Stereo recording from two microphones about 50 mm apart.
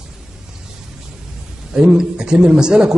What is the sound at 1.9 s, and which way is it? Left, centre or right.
A man's voice, centre.